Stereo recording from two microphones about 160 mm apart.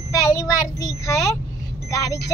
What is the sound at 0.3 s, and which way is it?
Speech, 20° left (ahead or behind).